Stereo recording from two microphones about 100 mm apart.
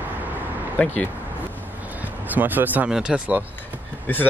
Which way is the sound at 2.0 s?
15° right (ahead or behind).